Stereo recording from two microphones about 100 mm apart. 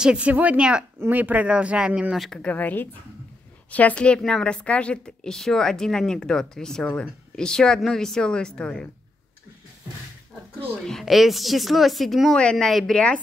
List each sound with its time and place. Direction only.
0.0 s speech: 10° right (ahead or behind)
2.1 s speech: centre (ahead or behind)
2.4 s speech: 15° left (ahead or behind)
10.9 s speech: centre (ahead or behind)